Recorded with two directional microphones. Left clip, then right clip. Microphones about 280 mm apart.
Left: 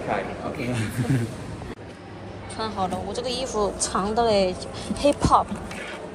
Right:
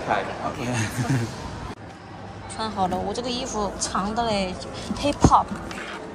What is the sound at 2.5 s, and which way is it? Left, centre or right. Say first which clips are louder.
A woman's voice: right 2 dB; centre.